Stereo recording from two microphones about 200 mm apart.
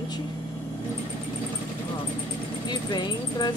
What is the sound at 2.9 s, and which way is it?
Speech, 20° left (ahead or behind).